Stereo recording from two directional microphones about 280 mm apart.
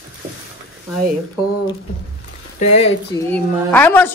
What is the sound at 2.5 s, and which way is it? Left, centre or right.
Speech, left.